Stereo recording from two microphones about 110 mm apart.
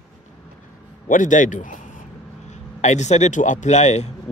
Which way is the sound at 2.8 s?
90° left.